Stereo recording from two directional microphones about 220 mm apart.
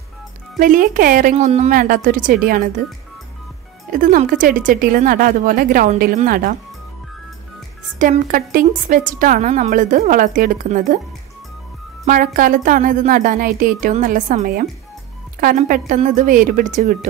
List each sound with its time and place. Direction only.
0.6 s a woman's voice: 40° right (ahead or behind)
3.9 s a woman's voice: 40° right (ahead or behind)
8.0 s a woman's voice: 35° right (ahead or behind)
12.1 s a woman's voice: 40° right (ahead or behind)
15.9 s a woman's voice: 35° right (ahead or behind)